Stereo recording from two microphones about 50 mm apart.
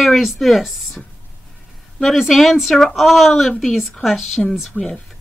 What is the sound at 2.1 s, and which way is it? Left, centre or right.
Speech, centre.